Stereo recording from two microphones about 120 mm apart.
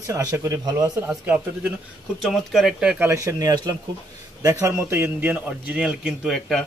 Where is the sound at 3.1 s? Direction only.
25° right (ahead or behind).